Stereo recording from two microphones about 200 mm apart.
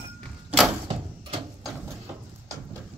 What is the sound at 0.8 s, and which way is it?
Door, 25° right (ahead or behind).